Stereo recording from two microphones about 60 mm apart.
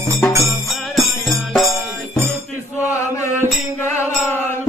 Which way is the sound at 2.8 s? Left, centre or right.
Left.